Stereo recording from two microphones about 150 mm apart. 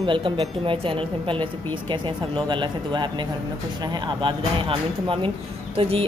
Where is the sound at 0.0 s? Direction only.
30° right (ahead or behind).